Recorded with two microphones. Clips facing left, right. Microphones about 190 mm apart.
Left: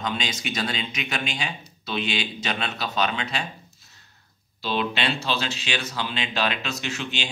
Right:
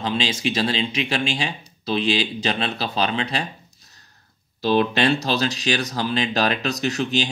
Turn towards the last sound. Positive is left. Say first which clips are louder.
# right 8 dB
turn(degrees=-40)  # may be behind; listen again after turning